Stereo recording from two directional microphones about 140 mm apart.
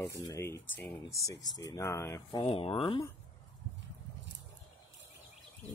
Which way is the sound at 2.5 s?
45° left (ahead or behind).